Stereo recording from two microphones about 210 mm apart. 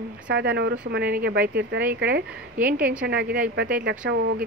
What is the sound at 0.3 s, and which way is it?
Speech, 50° right (ahead or behind).